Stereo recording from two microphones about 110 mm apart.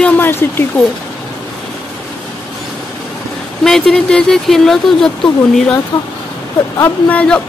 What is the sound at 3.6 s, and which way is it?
Speech, 5° left (ahead or behind).